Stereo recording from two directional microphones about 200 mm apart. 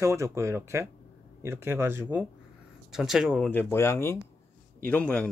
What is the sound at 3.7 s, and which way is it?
Speech, 15° left (ahead or behind).